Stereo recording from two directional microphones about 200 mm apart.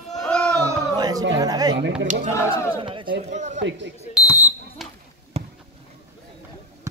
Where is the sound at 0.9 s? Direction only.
20° right (ahead or behind).